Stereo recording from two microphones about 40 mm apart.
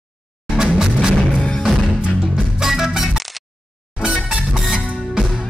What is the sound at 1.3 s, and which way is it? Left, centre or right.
Music, left.